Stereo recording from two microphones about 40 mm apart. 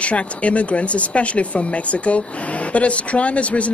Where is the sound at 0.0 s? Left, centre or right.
Left.